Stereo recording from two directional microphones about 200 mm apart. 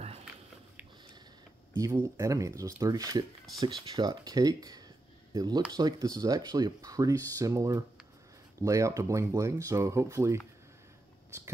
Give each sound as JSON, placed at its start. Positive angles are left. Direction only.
{"t": 1.8, "sound": "speech", "side_deg": -15}